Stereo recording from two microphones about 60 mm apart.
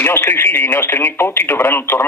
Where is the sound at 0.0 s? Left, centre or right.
Left.